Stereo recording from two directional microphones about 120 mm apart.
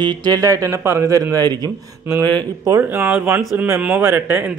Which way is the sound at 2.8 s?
15° right (ahead or behind).